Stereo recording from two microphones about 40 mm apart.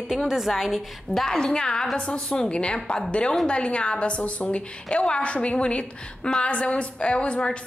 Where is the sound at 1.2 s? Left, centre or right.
Centre.